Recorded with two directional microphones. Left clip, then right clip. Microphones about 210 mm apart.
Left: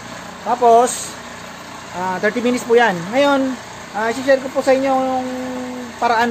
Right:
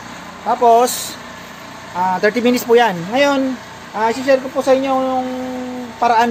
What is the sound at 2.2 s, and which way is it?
Speech, 40° right (ahead or behind).